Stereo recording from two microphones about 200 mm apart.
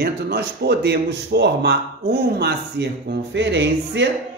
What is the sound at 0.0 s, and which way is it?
A man's voice, 50° right (ahead or behind).